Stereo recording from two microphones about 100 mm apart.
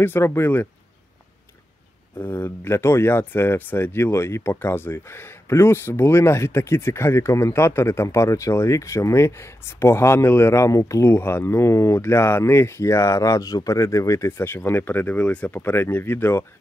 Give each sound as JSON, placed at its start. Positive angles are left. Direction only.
{"t": 0.0, "sound": "speech", "side_deg": 25}
{"t": 2.1, "sound": "speech", "side_deg": 20}